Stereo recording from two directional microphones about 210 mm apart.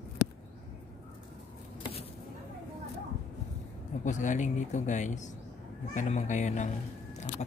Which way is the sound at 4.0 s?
35° left (ahead or behind).